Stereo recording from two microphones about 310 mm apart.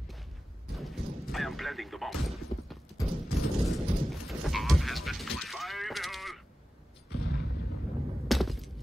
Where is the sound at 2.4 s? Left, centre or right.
Left.